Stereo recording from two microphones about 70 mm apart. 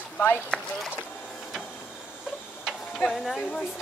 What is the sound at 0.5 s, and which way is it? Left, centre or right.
Speech, centre.